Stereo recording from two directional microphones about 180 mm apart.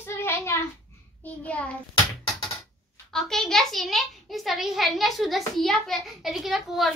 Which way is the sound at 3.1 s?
Centre (ahead or behind).